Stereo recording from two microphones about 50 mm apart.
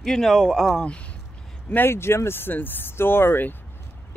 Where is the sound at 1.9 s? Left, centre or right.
Left.